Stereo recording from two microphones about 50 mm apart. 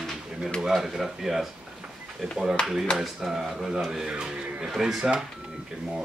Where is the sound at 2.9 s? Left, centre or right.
Centre.